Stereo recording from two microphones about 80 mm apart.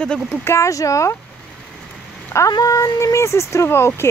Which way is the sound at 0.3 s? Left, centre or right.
Left.